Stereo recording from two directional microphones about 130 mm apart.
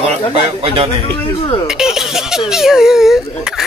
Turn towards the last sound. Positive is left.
turn(degrees=-5)  # may be behind; listen again after turning